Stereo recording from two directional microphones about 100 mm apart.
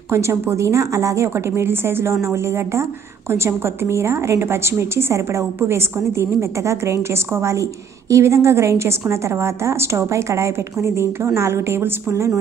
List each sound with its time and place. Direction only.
0.1 s a woman's voice: 25° right (ahead or behind)